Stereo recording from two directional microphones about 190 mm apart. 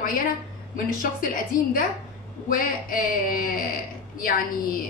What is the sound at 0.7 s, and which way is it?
A woman's voice, 45° left (ahead or behind).